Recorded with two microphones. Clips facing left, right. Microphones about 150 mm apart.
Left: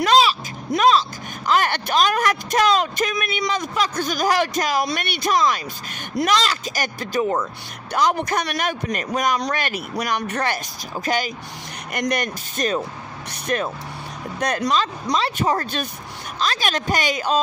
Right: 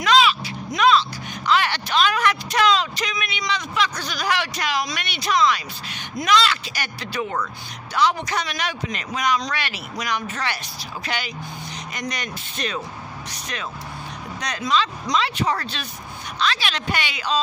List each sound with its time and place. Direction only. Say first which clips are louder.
0.0 s vehicle: left 1 dB; 40° left (ahead or behind)
0.7 s speech: left 1 dB; 40° left (ahead or behind)
11.9 s speech: left 8 dB; 55° left (ahead or behind)